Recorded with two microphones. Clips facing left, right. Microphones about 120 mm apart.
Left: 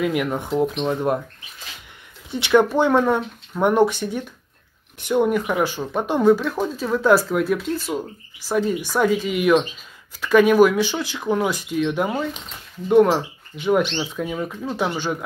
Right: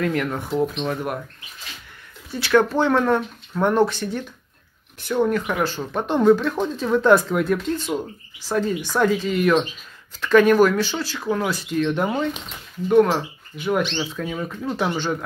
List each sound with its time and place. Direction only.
0.0 s speech: 15° left (ahead or behind)
2.3 s speech: 15° left (ahead or behind)
12.8 s speech: 15° left (ahead or behind)